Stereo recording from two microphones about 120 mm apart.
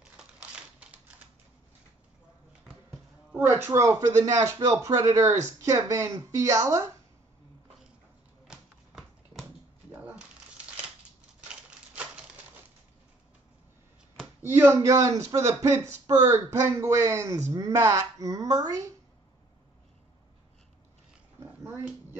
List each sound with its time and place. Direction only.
0.0 s typewriter: 10° right (ahead or behind)
3.6 s speech: 25° right (ahead or behind)
8.5 s typewriter: centre (ahead or behind)
11.4 s a sound: 10° right (ahead or behind)
14.4 s a man's voice: 20° right (ahead or behind)
21.6 s speech: 20° right (ahead or behind)